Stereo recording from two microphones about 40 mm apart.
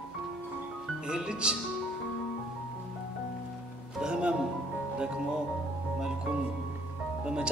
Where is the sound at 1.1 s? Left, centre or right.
Right.